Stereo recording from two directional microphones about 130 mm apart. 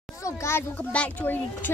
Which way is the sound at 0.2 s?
20° left (ahead or behind).